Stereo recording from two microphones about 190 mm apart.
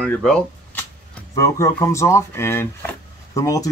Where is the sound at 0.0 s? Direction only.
5° left (ahead or behind).